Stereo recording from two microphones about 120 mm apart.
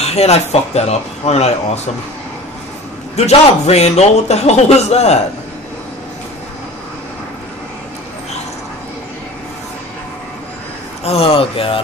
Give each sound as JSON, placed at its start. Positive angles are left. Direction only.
{"t": 0.0, "sound": "a man's voice", "side_deg": 60}
{"t": 3.2, "sound": "a man's voice", "side_deg": 60}
{"t": 11.1, "sound": "speech", "side_deg": 55}